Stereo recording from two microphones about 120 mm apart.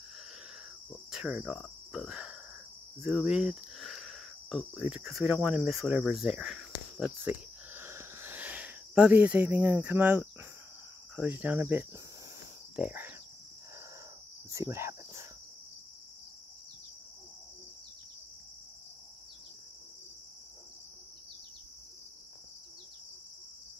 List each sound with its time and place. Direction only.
1.1 s speech: 5° right (ahead or behind)
7.7 s a sound: 20° right (ahead or behind)
11.1 s speech: 10° right (ahead or behind)
14.5 s cricket: 25° right (ahead or behind)